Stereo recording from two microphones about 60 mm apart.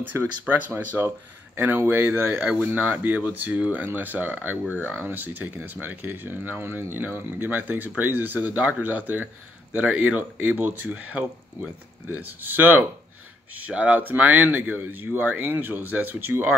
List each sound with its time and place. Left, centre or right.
0.1 s speech: right
0.5 s speech: right